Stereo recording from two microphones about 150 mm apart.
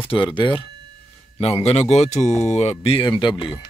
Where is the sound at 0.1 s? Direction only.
30° left (ahead or behind).